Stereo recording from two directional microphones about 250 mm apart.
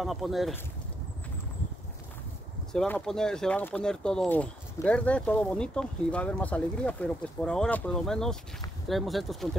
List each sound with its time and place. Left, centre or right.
0.0 s speech: centre
2.7 s speech: centre